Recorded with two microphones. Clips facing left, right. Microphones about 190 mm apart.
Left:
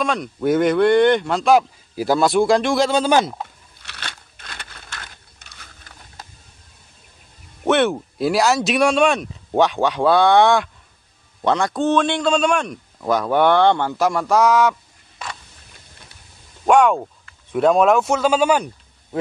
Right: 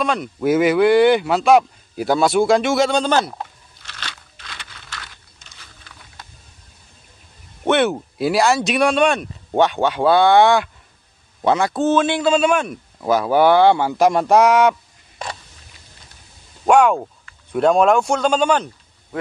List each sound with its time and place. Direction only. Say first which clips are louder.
0.0 s a man's voice: right 1 dB; centre (ahead or behind)
3.8 s crumpling: even; 60° left (ahead or behind)
7.6 s a man's voice: even; centre (ahead or behind); by 14.8 s 20° right (ahead or behind)
16.6 s speech: right 1 dB; centre (ahead or behind)